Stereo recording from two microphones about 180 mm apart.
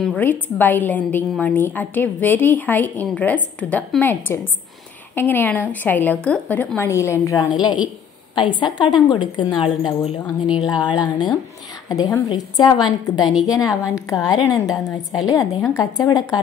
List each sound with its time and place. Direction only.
0.0 s a woman's voice: 5° left (ahead or behind)